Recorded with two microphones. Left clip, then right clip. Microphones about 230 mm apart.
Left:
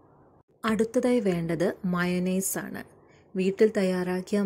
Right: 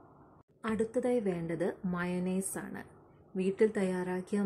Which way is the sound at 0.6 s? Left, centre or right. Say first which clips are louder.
Left 7 dB; left.